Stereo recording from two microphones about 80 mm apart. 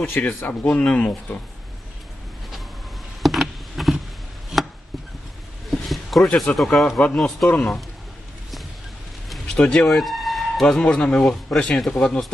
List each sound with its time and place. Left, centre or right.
0.0 s speech: left
3.2 s a sound: centre
5.7 s a sound: centre
6.6 s speech: centre
7.4 s speech: centre
9.3 s speech: centre